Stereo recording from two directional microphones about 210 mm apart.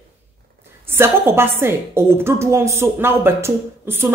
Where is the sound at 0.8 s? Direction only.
10° right (ahead or behind).